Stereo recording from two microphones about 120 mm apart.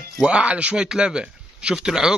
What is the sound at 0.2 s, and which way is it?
A man's voice, 10° right (ahead or behind).